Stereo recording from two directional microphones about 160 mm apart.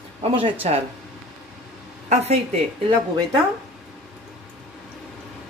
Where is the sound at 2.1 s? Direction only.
40° right (ahead or behind).